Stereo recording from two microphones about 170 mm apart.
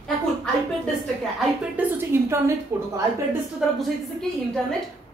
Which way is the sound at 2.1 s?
15° right (ahead or behind).